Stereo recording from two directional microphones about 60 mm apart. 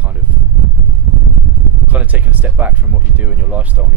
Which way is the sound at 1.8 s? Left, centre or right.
Right.